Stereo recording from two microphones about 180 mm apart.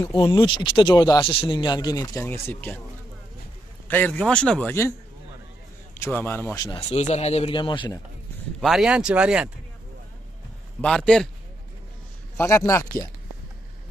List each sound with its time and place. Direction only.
0.0 s speech: 20° left (ahead or behind)
3.8 s a man's voice: 10° left (ahead or behind)
5.9 s a man's voice: 10° left (ahead or behind)
6.9 s speech: 40° left (ahead or behind)
8.5 s speech: centre (ahead or behind)
10.8 s speech: 5° left (ahead or behind)
12.4 s a man's voice: 10° left (ahead or behind)